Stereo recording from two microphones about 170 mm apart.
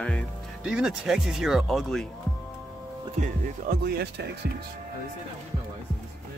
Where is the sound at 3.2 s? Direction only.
60° right (ahead or behind).